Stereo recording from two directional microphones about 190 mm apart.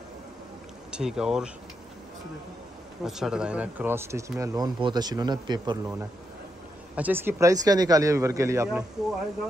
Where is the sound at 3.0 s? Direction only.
Centre (ahead or behind); by 6.0 s 20° right (ahead or behind).